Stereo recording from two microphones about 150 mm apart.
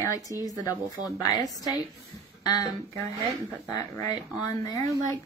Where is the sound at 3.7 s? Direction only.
20° left (ahead or behind).